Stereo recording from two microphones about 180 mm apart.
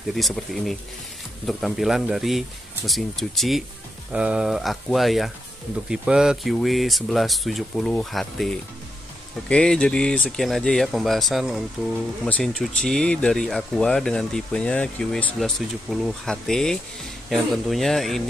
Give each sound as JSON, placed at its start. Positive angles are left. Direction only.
{"t": 0.1, "sound": "speech", "side_deg": 0}